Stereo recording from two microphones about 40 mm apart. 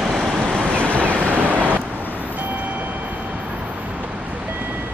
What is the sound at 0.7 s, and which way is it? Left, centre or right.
Vehicle, left.